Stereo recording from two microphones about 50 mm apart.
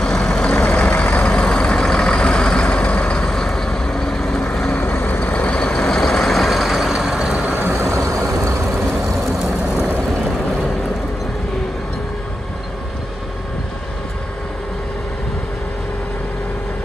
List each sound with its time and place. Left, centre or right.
0.0 s vehicle: centre
0.9 s vehicle: left
1.3 s vehicle: centre
4.7 s vehicle: left
5.7 s vehicle: centre
7.7 s vehicle: right
9.0 s vehicle: centre